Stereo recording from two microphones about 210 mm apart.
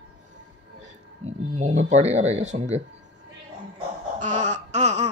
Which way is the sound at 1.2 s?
35° right (ahead or behind).